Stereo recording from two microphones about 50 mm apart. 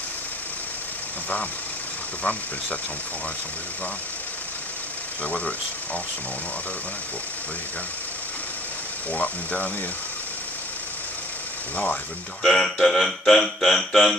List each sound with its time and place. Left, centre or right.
5.2 s speech: left
9.1 s speech: left
12.4 s speech: centre